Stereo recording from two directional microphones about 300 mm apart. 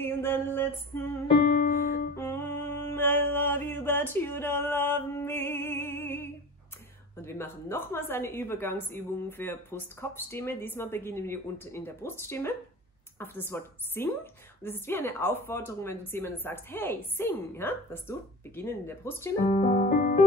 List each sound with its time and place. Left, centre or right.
0.0 s a sound: centre
1.5 s music: left
2.1 s mantra: centre
7.2 s a woman's voice: centre
19.5 s music: left